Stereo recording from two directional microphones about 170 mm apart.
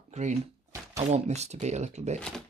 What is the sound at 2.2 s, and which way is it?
Speech, 5° left (ahead or behind).